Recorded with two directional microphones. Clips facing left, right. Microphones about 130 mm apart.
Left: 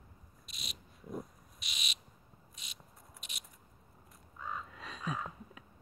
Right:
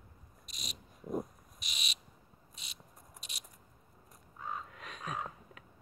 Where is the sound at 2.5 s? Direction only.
30° right (ahead or behind).